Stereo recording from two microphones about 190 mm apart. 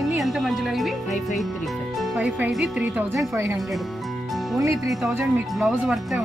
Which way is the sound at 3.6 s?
Centre (ahead or behind).